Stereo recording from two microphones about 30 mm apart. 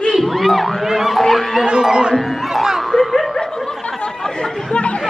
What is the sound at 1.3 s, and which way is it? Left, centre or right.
Speech, centre.